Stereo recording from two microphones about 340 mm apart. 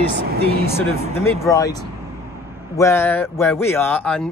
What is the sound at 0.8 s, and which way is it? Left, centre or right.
Speech, centre.